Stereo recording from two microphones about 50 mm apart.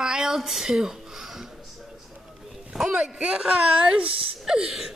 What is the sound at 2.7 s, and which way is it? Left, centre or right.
Speech, centre.